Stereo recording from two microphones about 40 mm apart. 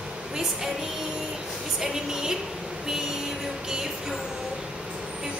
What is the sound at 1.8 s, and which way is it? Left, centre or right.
Speech, centre.